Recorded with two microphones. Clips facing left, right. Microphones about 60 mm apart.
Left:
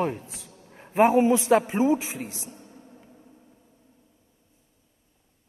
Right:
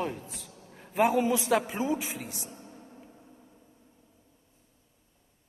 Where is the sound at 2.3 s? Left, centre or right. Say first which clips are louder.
Left 1 dB; right.